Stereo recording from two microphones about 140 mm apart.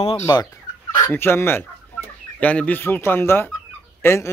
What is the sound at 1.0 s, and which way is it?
Speech, 15° left (ahead or behind).